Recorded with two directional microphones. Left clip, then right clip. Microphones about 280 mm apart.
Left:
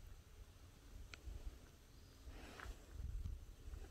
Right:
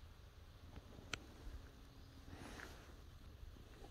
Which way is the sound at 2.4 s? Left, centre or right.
Centre.